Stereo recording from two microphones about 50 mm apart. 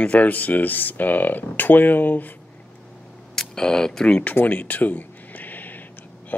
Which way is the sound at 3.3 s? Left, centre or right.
Centre.